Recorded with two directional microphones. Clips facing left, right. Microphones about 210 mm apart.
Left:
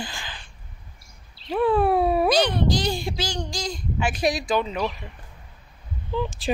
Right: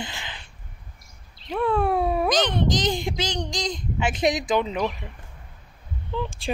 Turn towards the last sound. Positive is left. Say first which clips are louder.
# left 2 dB
turn(degrees=5)  # may be behind; listen again after turning